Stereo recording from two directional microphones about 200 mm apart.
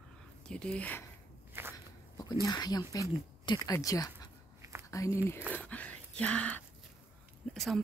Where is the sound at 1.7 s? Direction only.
20° left (ahead or behind).